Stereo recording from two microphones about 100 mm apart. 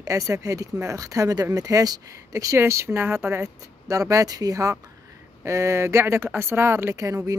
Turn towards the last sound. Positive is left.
turn(degrees=-35)  # may be behind; listen again after turning